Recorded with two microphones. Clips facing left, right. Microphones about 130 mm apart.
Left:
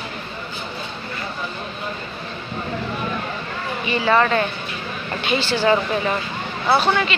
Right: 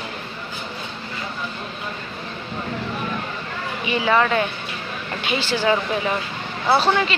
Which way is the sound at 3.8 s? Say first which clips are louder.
Left 1 dB; 10° right (ahead or behind).